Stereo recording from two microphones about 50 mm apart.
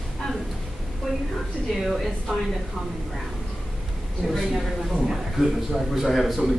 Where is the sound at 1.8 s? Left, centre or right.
Centre.